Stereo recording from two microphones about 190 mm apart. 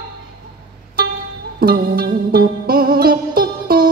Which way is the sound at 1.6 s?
55° right (ahead or behind).